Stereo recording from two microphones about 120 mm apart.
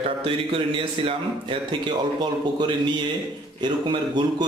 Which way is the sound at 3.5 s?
40° right (ahead or behind).